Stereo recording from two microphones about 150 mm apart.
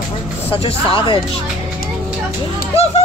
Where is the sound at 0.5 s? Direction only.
35° left (ahead or behind).